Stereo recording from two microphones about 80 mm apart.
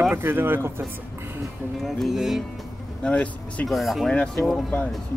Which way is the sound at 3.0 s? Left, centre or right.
Centre.